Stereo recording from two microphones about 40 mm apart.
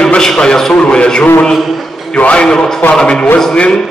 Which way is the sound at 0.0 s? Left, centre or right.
Centre.